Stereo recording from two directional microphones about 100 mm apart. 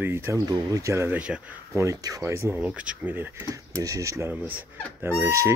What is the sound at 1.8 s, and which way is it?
Speech, 35° right (ahead or behind).